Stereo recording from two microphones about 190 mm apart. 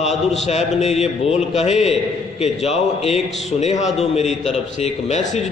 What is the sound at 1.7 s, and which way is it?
Speech, centre (ahead or behind).